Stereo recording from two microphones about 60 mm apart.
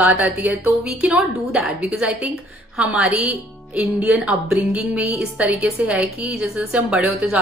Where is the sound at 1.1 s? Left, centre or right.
Centre; by 6.2 s right.